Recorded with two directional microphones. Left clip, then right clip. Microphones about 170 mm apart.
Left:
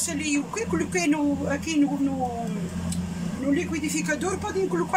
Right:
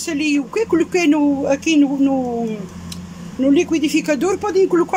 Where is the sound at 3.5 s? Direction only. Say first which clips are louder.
Right 10 dB; 60° right (ahead or behind).